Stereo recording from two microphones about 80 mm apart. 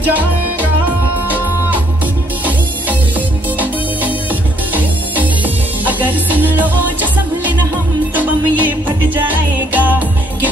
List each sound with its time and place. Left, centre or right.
0.1 s music: right
5.9 s music: right